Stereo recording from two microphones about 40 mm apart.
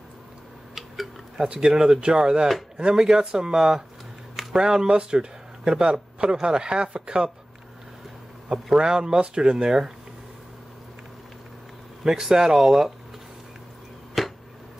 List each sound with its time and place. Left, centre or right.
1.5 s speech: centre
8.7 s speech: centre
12.0 s speech: centre
14.2 s a sound: centre